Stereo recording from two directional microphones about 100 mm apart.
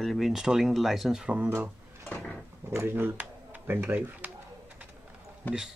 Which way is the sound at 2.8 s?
20° right (ahead or behind).